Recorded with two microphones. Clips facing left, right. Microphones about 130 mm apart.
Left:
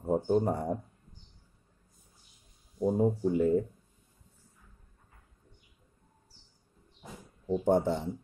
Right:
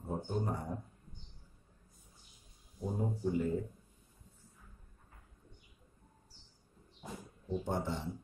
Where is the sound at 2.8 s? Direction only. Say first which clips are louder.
Left 11 dB; 50° left (ahead or behind).